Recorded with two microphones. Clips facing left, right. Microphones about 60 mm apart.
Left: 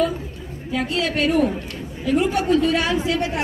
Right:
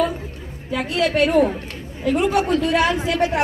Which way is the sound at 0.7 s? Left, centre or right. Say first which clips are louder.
Right 3 dB; right.